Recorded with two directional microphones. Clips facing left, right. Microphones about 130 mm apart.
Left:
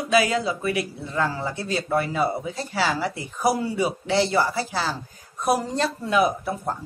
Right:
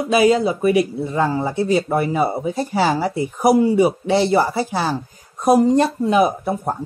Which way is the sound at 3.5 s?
20° right (ahead or behind).